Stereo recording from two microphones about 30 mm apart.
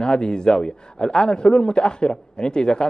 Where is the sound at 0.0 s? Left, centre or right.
Left.